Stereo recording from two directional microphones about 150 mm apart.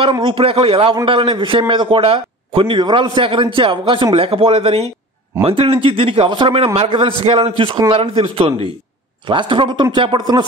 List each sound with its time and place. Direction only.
0.0 s a man's voice: 35° right (ahead or behind)